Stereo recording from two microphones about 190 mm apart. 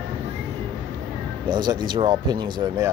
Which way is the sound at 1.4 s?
25° right (ahead or behind).